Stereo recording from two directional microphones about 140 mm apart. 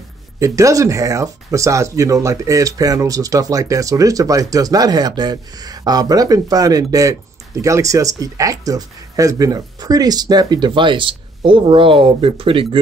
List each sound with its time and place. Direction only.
0.4 s speech: 25° right (ahead or behind); by 12.6 s 40° right (ahead or behind)